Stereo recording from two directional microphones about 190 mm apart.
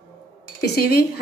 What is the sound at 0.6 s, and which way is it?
Speech, 55° left (ahead or behind).